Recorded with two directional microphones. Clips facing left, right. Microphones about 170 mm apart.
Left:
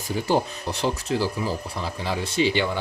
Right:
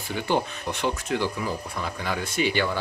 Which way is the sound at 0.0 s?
35° left (ahead or behind).